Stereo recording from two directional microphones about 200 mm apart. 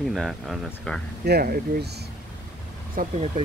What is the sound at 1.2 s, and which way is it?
Speech, 50° right (ahead or behind).